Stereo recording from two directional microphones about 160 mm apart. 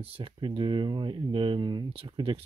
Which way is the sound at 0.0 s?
35° right (ahead or behind).